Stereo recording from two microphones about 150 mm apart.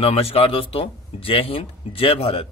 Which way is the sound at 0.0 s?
40° left (ahead or behind).